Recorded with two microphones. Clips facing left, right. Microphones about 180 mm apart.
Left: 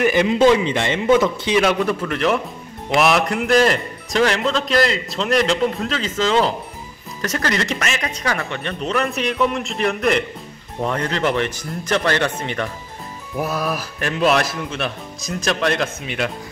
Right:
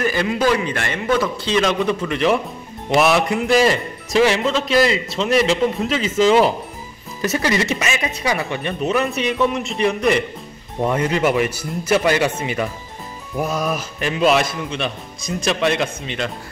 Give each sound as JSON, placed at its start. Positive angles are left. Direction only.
{"t": 0.0, "sound": "a man's voice", "side_deg": 20}
{"t": 1.6, "sound": "a man's voice", "side_deg": 5}